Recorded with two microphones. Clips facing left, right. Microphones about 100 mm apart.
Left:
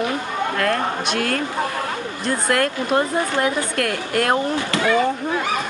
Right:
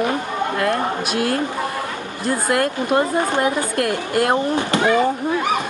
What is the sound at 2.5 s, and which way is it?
Speech, 10° right (ahead or behind).